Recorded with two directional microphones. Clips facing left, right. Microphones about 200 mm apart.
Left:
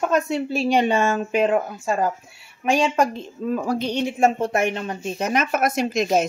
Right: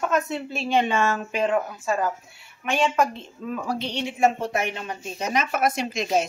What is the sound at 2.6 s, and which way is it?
A woman's voice, 35° left (ahead or behind).